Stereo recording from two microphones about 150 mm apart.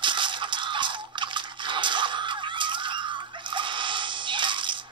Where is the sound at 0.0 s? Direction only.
30° right (ahead or behind).